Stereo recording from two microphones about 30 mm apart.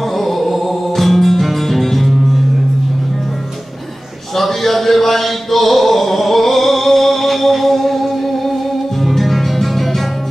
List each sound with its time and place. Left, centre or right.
0.2 s music: centre
4.4 s a sound: centre
9.0 s music: centre